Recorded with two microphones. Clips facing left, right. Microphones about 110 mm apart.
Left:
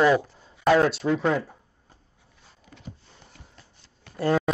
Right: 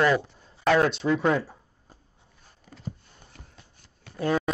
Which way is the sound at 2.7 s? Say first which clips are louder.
Right 1 dB; 40° right (ahead or behind).